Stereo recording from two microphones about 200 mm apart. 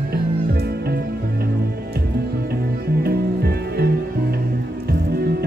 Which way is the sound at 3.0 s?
50° right (ahead or behind).